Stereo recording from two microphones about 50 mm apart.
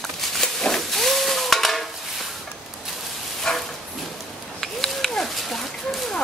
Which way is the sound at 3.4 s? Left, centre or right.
Centre.